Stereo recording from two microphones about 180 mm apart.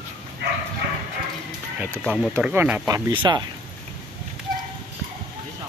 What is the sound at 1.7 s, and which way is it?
Speech, 5° right (ahead or behind).